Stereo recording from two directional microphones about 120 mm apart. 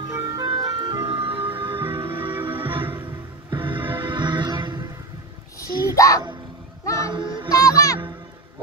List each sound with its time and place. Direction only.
0.1 s ice cream truck: 30° right (ahead or behind)
1.0 s ambulance: 50° right (ahead or behind)
2.0 s music: 45° right (ahead or behind)
2.9 s music: 20° right (ahead or behind)
3.4 s music: 40° right (ahead or behind)
5.6 s a sound: 25° left (ahead or behind)
7.1 s child singing: 40° right (ahead or behind)
7.6 s music: 30° left (ahead or behind)